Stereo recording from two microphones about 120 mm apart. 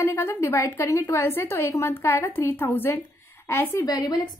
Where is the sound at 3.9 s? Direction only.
35° left (ahead or behind).